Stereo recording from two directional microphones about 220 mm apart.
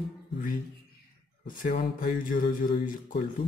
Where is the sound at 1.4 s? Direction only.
40° left (ahead or behind).